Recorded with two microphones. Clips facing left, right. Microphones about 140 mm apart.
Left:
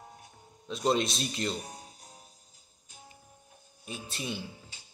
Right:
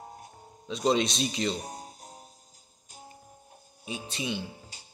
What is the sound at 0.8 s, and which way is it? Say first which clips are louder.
Speech: right 2 dB; 5° left (ahead or behind).